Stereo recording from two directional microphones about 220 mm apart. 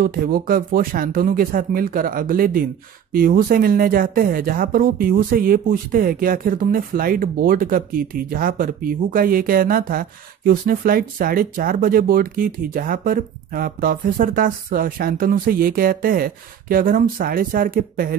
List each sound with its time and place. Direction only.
0.0 s speech: 40° right (ahead or behind)